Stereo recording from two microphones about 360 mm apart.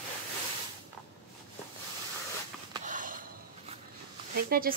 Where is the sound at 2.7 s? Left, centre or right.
Right.